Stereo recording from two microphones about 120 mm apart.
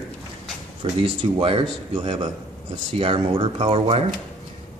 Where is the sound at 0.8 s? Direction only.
50° right (ahead or behind).